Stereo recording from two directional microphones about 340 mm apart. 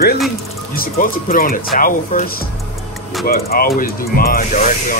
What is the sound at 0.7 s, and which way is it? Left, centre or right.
Speech, left.